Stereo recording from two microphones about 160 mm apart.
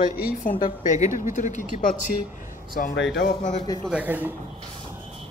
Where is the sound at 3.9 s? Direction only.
10° right (ahead or behind).